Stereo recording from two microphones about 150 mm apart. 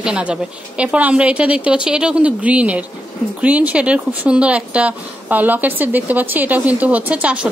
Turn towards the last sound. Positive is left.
turn(degrees=-10)  # may be behind; listen again after turning